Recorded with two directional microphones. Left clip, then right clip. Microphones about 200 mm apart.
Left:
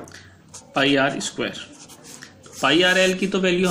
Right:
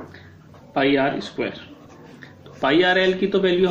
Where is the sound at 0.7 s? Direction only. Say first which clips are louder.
Even; 40° left (ahead or behind).